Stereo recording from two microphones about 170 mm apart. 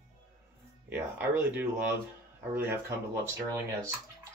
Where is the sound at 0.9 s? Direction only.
10° right (ahead or behind).